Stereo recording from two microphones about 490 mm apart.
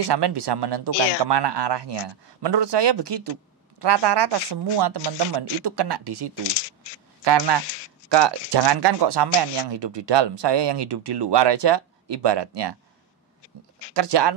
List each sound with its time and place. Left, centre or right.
0.1 s speech: right
6.4 s shuffling cards: left
7.2 s speech: right
7.6 s a sound: left
8.1 s speech: right
13.9 s speech: right